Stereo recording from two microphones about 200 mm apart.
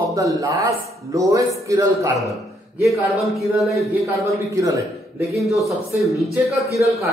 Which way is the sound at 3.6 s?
Centre (ahead or behind).